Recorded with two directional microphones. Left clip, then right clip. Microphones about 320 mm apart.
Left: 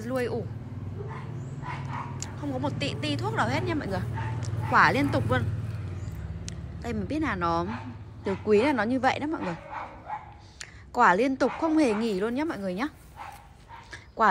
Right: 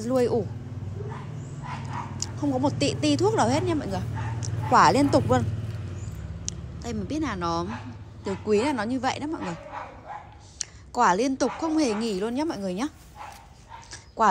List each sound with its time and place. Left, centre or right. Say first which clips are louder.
0.0 s a woman's voice: right 6 dB; centre
2.1 s a woman's voice: right 6 dB; centre
6.4 s speech: right 2 dB; centre
10.6 s a woman's voice: left 1 dB; centre